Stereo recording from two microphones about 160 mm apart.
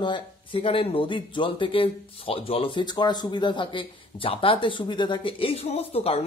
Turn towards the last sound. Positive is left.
turn(degrees=40)  # may be behind; listen again after turning